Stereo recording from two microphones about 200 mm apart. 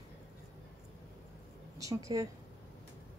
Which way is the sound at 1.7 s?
15° right (ahead or behind).